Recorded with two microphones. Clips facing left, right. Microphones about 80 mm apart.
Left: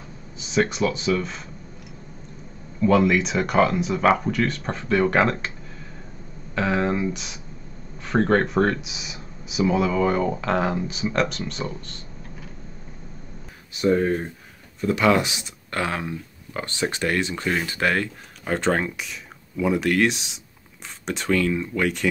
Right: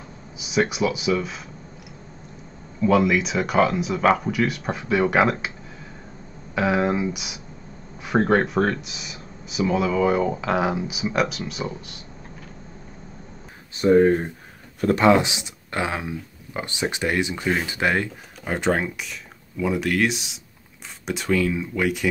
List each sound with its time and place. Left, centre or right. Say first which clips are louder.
0.4 s speech: even; centre
2.8 s speech: even; centre
6.5 s speech: right 2 dB; centre
13.8 s speech: right 4 dB; right; by 22.1 s centre